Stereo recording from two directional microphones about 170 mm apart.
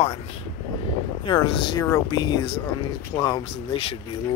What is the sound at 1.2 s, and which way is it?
Speech, 30° left (ahead or behind).